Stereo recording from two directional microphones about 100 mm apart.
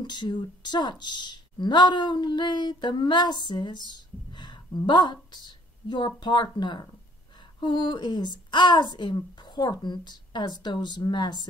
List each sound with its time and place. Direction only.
0.0 s a woman's voice: 45° left (ahead or behind)